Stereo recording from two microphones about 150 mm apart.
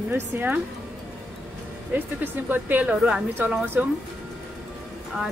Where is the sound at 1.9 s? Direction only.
15° right (ahead or behind).